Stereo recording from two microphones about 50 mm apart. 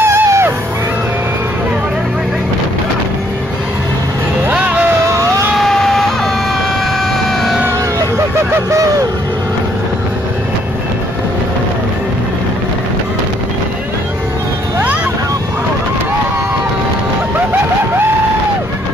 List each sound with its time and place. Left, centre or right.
0.0 s music: right
5.6 s vehicle: centre